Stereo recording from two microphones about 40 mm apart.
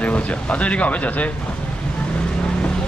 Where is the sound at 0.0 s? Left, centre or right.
Left.